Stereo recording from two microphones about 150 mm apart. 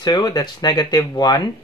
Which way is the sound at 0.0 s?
25° left (ahead or behind).